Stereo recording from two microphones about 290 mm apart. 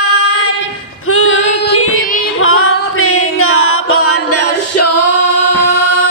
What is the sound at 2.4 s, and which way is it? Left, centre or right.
Music, left.